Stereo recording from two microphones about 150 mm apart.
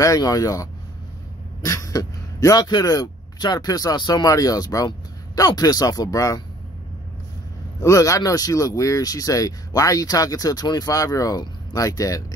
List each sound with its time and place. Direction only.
0.0 s speech: 25° left (ahead or behind)
7.8 s speech: 20° left (ahead or behind)